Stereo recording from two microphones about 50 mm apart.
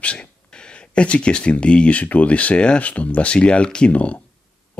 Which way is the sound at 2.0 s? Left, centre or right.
Left.